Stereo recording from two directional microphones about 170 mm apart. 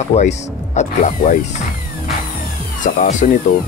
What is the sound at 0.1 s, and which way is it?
Speech, 45° left (ahead or behind).